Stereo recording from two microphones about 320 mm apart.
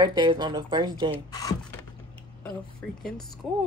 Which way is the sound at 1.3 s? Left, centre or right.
Centre.